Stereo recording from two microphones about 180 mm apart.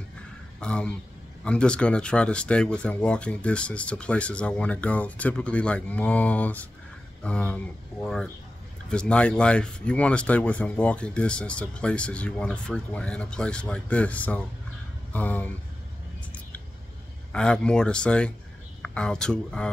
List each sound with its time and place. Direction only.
0.6 s speech: 5° left (ahead or behind)
17.3 s speech: 5° left (ahead or behind)